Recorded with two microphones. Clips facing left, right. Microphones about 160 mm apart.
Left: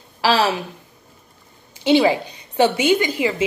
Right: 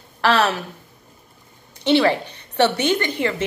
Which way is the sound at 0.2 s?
10° left (ahead or behind).